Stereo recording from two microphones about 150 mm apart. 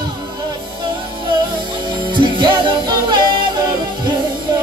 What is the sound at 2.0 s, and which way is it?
Music, 30° right (ahead or behind).